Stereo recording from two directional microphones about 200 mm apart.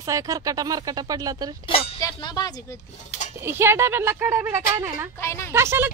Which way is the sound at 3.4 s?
10° right (ahead or behind).